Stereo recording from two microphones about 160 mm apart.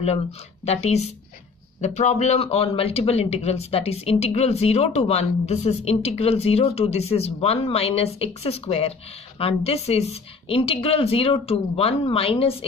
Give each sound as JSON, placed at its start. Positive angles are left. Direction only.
{"t": 0.7, "sound": "speech", "side_deg": 40}